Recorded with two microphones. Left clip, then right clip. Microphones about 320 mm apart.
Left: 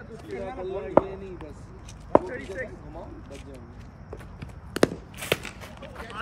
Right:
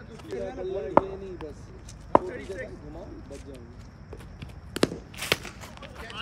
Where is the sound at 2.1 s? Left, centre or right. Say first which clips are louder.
Left 1 dB; centre.